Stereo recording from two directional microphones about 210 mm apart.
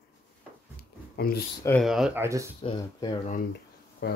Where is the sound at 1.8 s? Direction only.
Centre (ahead or behind).